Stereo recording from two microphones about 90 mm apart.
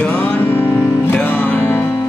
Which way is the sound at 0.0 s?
15° left (ahead or behind).